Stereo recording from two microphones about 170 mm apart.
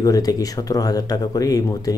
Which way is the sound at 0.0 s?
20° left (ahead or behind).